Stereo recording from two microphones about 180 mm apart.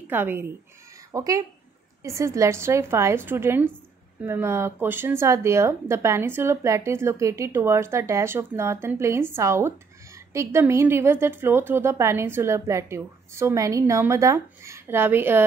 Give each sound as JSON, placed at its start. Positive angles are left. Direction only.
{"t": 0.1, "sound": "speech", "side_deg": -10}